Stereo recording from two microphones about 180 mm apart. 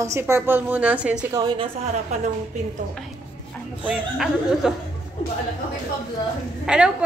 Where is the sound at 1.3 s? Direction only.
20° right (ahead or behind).